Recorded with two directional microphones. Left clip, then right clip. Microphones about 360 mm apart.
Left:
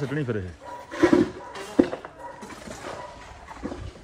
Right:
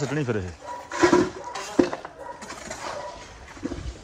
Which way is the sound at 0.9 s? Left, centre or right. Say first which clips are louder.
Right 1 dB; centre.